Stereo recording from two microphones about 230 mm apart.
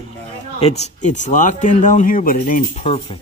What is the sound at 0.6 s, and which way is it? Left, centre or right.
Speech, left.